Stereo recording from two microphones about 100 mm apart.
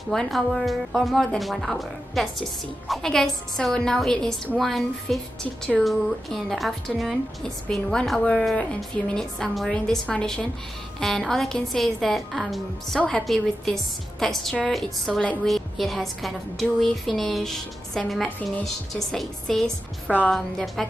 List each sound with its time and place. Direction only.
0.1 s a woman's voice: centre (ahead or behind)
20.1 s a woman's voice: 15° left (ahead or behind)
20.3 s a woman's voice: 5° left (ahead or behind)